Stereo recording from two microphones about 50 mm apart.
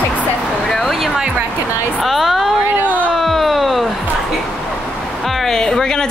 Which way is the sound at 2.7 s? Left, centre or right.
Right.